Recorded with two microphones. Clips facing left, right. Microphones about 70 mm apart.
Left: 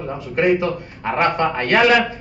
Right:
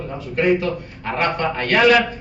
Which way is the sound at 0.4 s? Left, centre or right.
Left.